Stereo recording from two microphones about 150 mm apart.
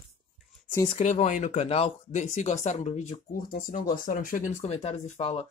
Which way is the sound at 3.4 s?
70° left (ahead or behind).